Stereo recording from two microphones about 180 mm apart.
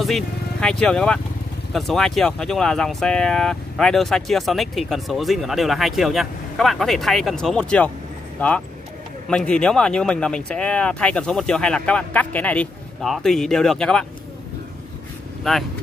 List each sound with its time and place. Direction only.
0.0 s speech: centre (ahead or behind)
15.5 s speech: centre (ahead or behind)